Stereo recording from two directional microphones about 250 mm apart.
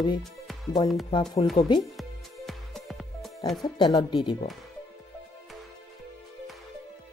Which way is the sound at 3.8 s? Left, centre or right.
Centre.